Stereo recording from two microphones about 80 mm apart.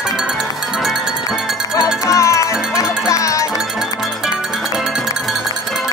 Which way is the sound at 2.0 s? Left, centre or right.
Left.